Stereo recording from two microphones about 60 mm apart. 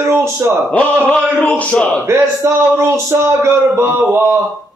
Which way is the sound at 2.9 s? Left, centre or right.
Right.